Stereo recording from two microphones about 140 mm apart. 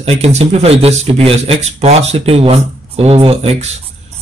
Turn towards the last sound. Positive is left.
turn(degrees=-45)  # may be behind; listen again after turning